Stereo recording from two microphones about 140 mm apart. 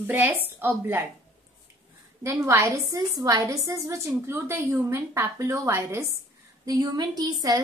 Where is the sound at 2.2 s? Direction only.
20° right (ahead or behind).